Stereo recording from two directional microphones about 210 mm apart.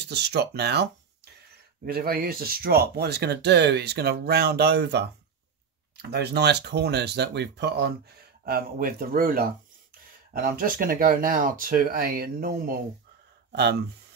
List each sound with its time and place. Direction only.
0.0 s speech: 55° right (ahead or behind)